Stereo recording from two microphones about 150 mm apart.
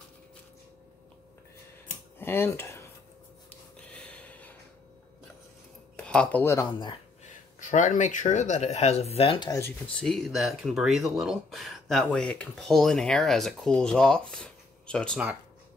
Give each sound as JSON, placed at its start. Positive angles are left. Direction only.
{"t": 2.1, "sound": "a sound", "side_deg": 15}
{"t": 3.4, "sound": "gasp", "side_deg": 10}
{"t": 5.9, "sound": "speech", "side_deg": 5}
{"t": 7.6, "sound": "speech", "side_deg": 55}
{"t": 9.9, "sound": "speech", "side_deg": 5}